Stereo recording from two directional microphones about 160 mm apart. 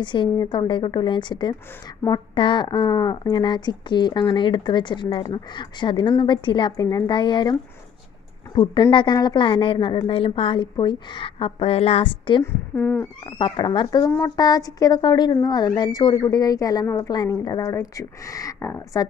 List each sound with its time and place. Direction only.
0.0 s speech: 30° left (ahead or behind)
8.9 s a woman's voice: 25° left (ahead or behind)
12.4 s cat: 15° left (ahead or behind)
13.4 s speech: 30° left (ahead or behind)